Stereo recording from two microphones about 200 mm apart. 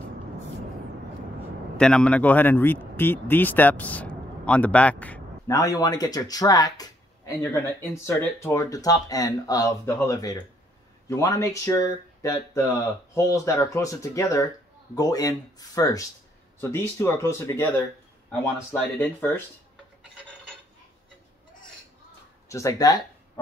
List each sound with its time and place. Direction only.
1.8 s speech: 5° left (ahead or behind)
18.8 s speech: 10° left (ahead or behind)
22.5 s speech: 15° left (ahead or behind)